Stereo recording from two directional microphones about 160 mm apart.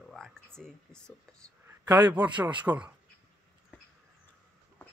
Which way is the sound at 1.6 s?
25° right (ahead or behind).